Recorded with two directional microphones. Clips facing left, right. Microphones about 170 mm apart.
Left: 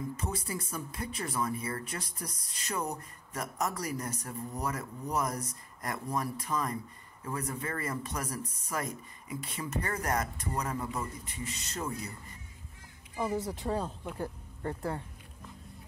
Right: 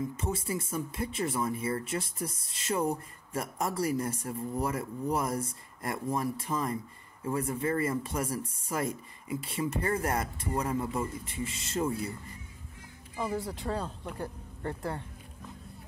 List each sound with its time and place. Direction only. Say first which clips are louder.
0.2 s speech: right 4 dB; 25° right (ahead or behind)
13.2 s speech: left 1 dB; 20° left (ahead or behind)
13.5 s speech: left 1 dB; 10° left (ahead or behind)